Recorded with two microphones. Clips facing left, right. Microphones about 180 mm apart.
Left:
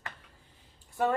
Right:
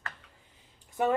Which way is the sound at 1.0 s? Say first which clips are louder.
Right 1 dB; 15° right (ahead or behind).